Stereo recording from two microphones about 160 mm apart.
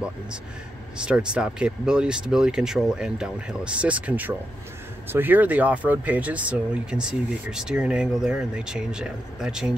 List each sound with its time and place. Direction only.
0.9 s speech: 5° right (ahead or behind)